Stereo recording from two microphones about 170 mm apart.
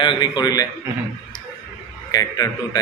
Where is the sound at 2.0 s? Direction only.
20° left (ahead or behind).